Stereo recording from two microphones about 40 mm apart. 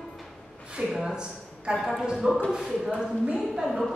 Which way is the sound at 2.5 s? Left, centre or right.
Centre.